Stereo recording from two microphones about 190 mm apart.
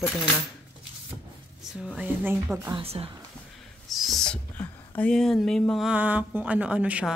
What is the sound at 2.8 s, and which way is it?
Speech, 30° right (ahead or behind).